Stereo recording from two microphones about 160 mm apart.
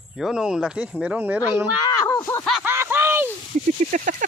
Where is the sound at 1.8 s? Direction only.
20° left (ahead or behind).